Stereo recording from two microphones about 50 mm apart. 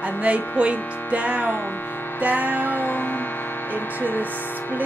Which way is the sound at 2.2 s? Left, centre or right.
Right.